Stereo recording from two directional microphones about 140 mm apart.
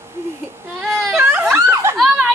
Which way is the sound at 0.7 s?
Centre (ahead or behind).